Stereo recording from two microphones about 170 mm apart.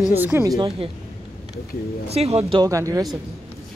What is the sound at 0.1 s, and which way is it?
Speech, 10° right (ahead or behind).